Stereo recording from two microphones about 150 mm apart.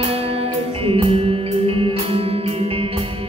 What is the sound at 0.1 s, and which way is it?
Music, 40° right (ahead or behind).